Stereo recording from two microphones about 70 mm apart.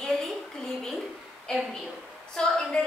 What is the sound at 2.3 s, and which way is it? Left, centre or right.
Speech, centre.